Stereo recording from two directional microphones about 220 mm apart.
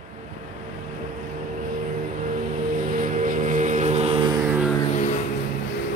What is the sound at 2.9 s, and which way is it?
Music, 35° right (ahead or behind).